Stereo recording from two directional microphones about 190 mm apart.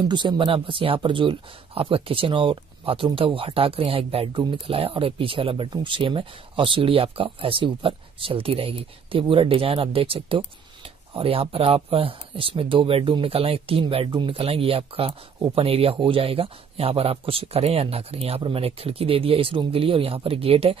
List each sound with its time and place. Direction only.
0.1 s speech: 25° right (ahead or behind)